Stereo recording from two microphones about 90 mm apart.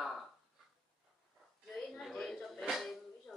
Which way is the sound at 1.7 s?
5° left (ahead or behind).